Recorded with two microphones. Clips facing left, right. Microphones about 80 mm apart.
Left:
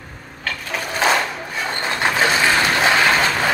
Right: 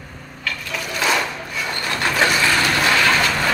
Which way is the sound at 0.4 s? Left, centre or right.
Left.